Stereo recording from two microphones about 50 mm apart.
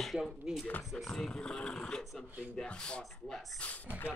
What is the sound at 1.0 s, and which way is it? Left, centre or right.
Speech, centre.